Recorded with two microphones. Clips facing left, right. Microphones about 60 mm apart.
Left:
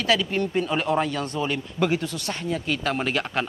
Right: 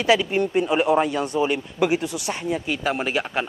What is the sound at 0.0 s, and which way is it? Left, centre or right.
A man's voice, centre.